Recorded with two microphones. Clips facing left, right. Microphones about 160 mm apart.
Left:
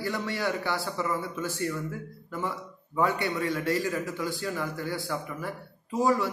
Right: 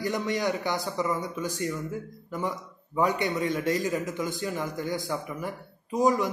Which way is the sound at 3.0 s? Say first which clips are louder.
Right 1 dB; 20° right (ahead or behind).